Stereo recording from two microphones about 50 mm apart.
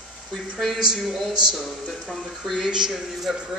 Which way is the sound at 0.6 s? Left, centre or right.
Centre.